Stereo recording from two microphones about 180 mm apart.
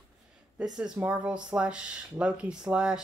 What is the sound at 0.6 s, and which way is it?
Speech, 5° right (ahead or behind).